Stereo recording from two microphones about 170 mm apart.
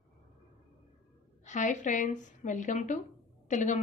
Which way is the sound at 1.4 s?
45° left (ahead or behind).